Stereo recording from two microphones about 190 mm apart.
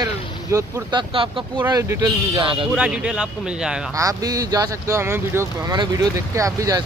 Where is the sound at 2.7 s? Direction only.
5° right (ahead or behind).